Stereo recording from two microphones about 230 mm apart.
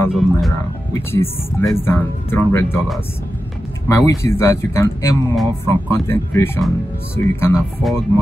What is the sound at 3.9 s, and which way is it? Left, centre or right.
Speech, centre.